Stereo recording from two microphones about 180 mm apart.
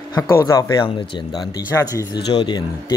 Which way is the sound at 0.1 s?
20° left (ahead or behind).